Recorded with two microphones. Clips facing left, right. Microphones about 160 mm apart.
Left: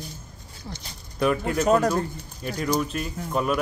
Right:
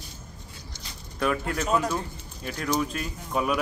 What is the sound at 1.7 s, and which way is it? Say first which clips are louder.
Speech: left 6 dB; 45° left (ahead or behind).